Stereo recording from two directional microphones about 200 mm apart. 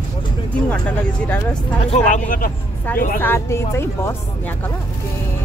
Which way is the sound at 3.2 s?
10° left (ahead or behind).